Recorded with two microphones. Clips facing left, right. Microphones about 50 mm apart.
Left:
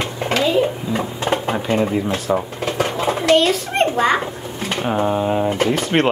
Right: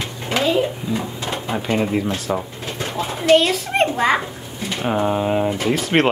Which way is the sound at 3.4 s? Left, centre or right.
Centre.